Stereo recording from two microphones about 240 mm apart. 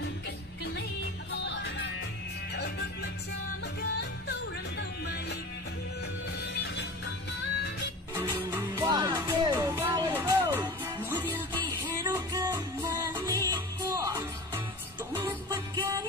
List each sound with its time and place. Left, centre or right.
1.4 s music: left
6.4 s music: left
8.1 s music: centre